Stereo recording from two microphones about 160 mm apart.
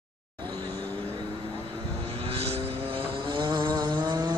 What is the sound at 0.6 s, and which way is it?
Vehicle, 10° left (ahead or behind).